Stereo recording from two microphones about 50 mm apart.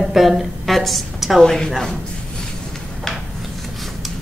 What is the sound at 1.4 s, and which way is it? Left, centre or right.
Speech, centre.